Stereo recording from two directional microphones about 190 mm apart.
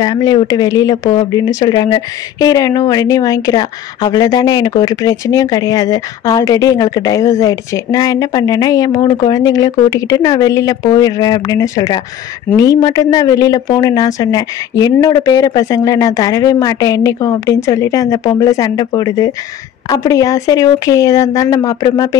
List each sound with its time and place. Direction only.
0.0 s speech: 20° left (ahead or behind)